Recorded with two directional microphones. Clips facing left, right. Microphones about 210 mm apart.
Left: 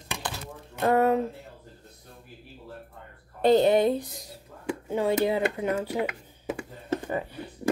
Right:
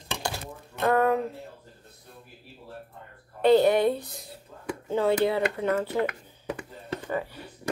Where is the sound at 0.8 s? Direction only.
25° left (ahead or behind).